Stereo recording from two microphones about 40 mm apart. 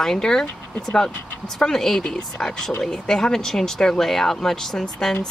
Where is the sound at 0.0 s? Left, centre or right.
Centre.